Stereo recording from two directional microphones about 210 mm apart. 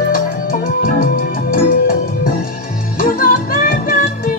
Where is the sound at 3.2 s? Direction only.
40° left (ahead or behind).